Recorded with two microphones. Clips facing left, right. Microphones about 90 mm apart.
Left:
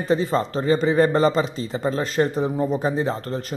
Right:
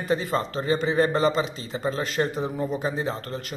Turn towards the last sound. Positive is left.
turn(degrees=35)  # may be behind; listen again after turning